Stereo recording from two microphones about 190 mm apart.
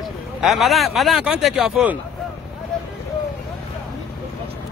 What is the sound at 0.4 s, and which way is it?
Speech, centre (ahead or behind).